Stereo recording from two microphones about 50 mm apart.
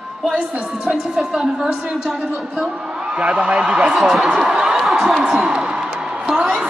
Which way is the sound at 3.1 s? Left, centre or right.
Right.